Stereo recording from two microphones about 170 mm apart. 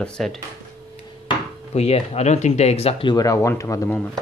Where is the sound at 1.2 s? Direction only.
35° left (ahead or behind).